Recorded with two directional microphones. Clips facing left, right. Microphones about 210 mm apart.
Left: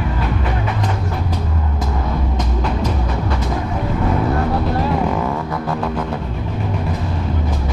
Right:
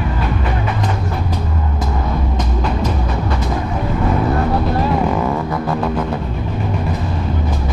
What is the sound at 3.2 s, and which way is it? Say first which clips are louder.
Vehicle: right 1 dB; 20° right (ahead or behind).